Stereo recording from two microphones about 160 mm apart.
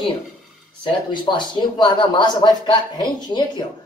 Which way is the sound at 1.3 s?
30° left (ahead or behind).